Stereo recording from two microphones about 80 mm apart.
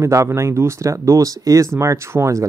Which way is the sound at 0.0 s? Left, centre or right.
Right.